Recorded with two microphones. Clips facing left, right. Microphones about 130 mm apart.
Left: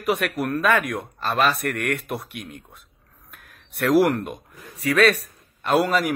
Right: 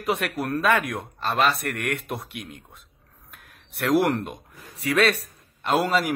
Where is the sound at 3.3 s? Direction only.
25° right (ahead or behind).